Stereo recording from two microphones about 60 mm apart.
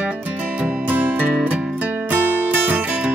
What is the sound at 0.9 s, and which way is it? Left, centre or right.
Music, right.